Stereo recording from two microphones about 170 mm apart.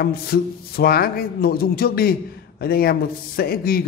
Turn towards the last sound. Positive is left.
turn(degrees=65)  # may be behind; listen again after turning